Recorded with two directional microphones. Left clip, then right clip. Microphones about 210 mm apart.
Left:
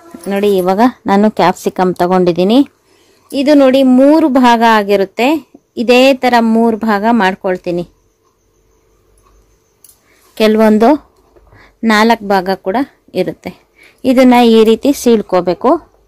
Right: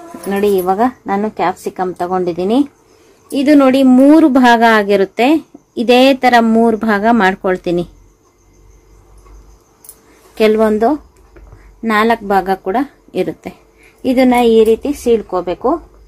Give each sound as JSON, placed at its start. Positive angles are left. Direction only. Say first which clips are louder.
{"t": 0.3, "sound": "speech", "louder": "left 2 dB", "side_deg": 40}
{"t": 3.3, "sound": "a woman's voice", "louder": "left 2 dB", "side_deg": 30}
{"t": 10.3, "sound": "speech", "louder": "left 2 dB", "side_deg": 40}